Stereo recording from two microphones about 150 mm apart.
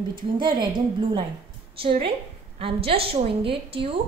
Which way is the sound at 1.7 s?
35° right (ahead or behind).